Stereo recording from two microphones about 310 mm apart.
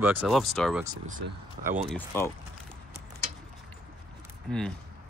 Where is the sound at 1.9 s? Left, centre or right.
Centre.